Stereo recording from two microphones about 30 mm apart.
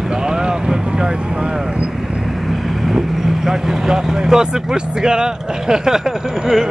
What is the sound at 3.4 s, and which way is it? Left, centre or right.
Vehicle, centre.